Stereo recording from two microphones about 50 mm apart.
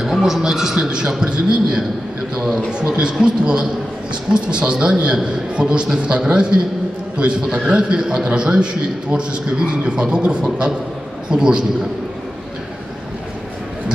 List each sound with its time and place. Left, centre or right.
0.0 s a man's voice: centre